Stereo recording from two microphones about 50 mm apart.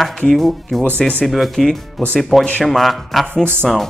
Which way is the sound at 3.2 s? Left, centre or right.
Centre.